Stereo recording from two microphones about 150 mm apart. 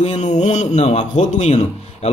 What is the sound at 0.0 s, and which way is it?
A man's voice, 50° left (ahead or behind).